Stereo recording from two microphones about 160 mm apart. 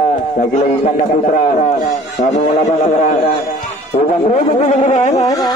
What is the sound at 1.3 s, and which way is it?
A man's voice, 50° left (ahead or behind).